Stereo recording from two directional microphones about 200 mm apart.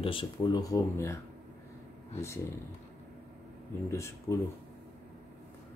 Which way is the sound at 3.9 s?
15° left (ahead or behind).